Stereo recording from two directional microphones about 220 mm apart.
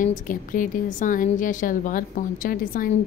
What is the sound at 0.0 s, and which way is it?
A woman's voice, 35° left (ahead or behind).